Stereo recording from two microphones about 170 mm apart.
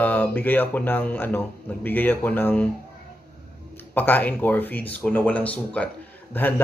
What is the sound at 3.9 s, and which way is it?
Speech, 10° left (ahead or behind).